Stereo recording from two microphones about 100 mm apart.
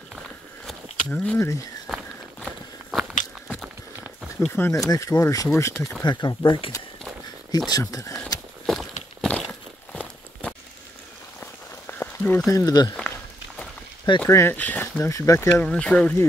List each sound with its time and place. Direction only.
0.7 s a sound: 10° left (ahead or behind)
1.9 s walk: centre (ahead or behind)
2.9 s biting: 5° right (ahead or behind)
4.5 s speech: 20° left (ahead or behind)
4.7 s speech: 35° left (ahead or behind)
6.0 s speech: 50° left (ahead or behind)
7.5 s speech: 40° left (ahead or behind)
8.6 s walk: centre (ahead or behind)
11.9 s a sound: 20° left (ahead or behind)
12.4 s speech: 35° left (ahead or behind)
14.3 s speech: 20° left (ahead or behind)
15.0 s speech: 30° left (ahead or behind)
15.6 s speech: 10° left (ahead or behind)